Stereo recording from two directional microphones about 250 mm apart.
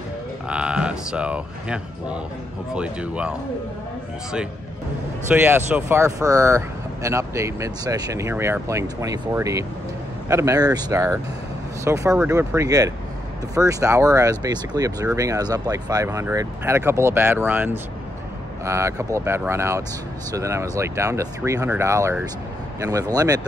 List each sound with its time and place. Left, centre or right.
0.5 s speech: centre
5.3 s speech: centre